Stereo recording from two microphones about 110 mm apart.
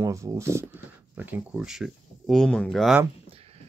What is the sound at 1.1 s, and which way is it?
Speech, 15° right (ahead or behind).